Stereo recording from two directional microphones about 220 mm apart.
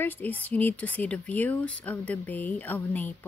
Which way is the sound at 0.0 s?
10° left (ahead or behind).